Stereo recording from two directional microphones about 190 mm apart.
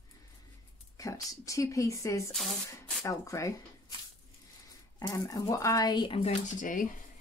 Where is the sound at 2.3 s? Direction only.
Centre (ahead or behind).